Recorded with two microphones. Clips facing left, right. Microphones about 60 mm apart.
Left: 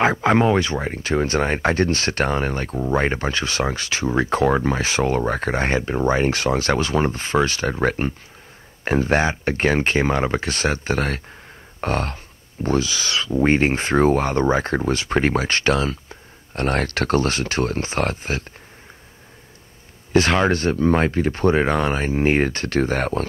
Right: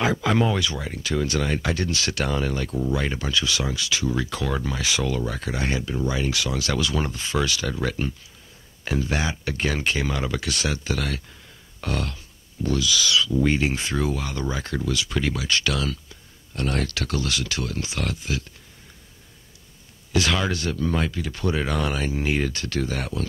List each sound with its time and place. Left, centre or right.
0.0 s speech: left
20.1 s speech: left